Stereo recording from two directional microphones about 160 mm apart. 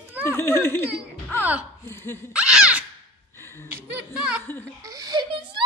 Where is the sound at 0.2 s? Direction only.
15° left (ahead or behind).